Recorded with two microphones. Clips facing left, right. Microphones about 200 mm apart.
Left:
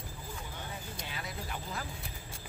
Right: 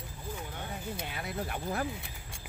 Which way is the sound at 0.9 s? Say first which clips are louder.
Right 5 dB; 55° right (ahead or behind).